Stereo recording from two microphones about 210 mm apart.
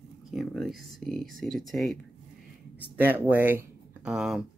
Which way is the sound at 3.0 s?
10° right (ahead or behind).